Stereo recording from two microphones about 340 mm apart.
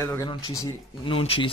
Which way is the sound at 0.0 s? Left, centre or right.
Centre.